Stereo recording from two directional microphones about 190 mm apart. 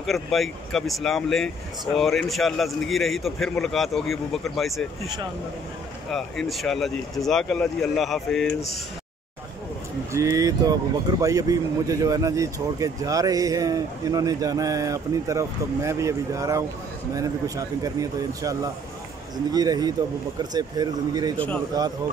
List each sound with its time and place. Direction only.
0.0 s speech: centre (ahead or behind)
6.0 s speech: centre (ahead or behind)
10.1 s a man's voice: 15° right (ahead or behind)